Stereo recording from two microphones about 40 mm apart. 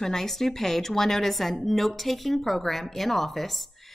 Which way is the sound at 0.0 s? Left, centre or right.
Centre.